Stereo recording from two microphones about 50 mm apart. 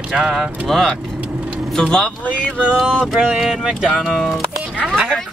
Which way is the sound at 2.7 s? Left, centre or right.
Centre.